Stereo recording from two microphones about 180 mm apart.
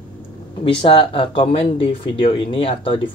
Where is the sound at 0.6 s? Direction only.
30° left (ahead or behind).